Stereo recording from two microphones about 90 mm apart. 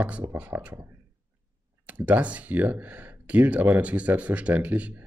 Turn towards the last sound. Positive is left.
turn(degrees=-15)  # may be behind; listen again after turning